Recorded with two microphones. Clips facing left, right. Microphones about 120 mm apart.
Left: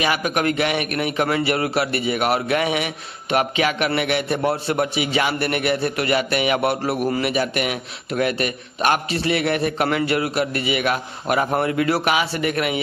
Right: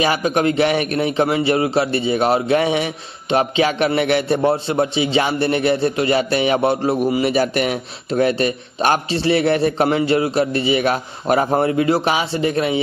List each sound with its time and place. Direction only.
0.0 s a man's voice: 30° right (ahead or behind)
4.4 s a man's voice: 25° right (ahead or behind)
7.2 s a man's voice: 35° right (ahead or behind)